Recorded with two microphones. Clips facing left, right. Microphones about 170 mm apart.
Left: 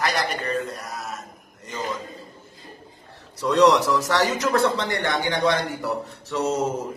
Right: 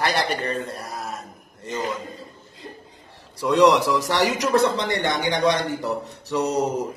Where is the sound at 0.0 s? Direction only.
30° right (ahead or behind).